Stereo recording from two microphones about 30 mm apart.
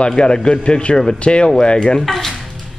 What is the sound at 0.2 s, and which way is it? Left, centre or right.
Speech, left.